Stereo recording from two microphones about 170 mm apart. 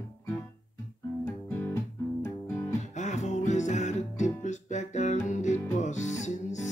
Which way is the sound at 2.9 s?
45° left (ahead or behind).